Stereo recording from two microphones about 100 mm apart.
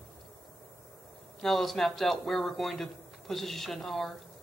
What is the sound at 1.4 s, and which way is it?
A man's voice, centre (ahead or behind).